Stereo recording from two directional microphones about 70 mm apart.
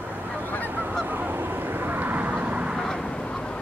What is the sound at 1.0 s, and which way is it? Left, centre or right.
Honk, right.